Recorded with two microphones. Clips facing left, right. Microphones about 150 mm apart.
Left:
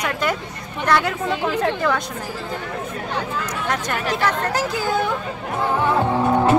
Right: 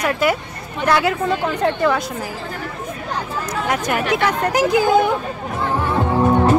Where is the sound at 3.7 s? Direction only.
10° right (ahead or behind).